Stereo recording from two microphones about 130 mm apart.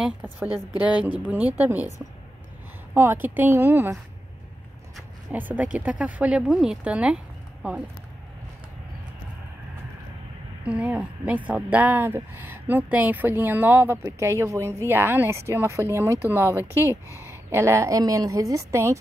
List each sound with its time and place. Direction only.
1.2 s a woman's voice: 10° right (ahead or behind)
2.9 s a woman's voice: 20° right (ahead or behind)
5.3 s a woman's voice: 15° right (ahead or behind)
10.6 s a woman's voice: 10° right (ahead or behind)